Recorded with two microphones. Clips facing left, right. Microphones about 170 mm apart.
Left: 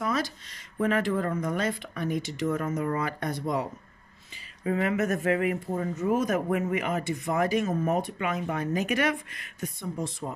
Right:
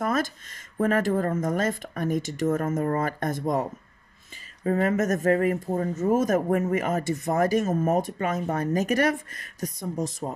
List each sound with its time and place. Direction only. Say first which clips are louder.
0.0 s speech: right 3 dB; 50° right (ahead or behind)
4.6 s speech: right 3 dB; 45° right (ahead or behind)